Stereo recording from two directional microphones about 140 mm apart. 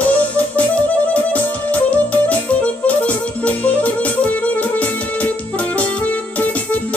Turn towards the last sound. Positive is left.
turn(degrees=10)  # may be behind; listen again after turning